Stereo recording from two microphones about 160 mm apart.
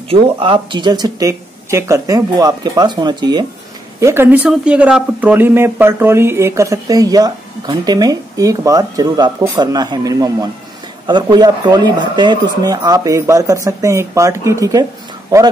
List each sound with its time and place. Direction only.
0.1 s speech: 30° right (ahead or behind)
4.0 s speech: 15° right (ahead or behind)